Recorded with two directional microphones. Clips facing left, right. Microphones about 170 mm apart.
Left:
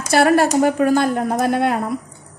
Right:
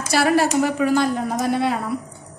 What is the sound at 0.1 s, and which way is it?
A woman's voice, 55° left (ahead or behind).